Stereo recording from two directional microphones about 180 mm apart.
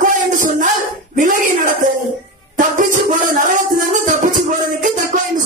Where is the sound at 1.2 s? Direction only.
45° right (ahead or behind).